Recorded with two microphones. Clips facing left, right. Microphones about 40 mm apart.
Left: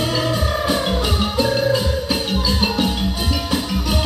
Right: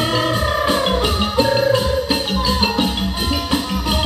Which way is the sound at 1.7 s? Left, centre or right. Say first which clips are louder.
Right 3 dB; right.